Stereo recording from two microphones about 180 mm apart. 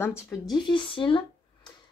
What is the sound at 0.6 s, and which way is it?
Speech, 25° left (ahead or behind).